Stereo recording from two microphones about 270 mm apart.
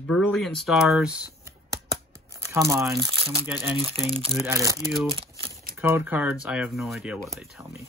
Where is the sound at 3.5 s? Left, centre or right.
Centre.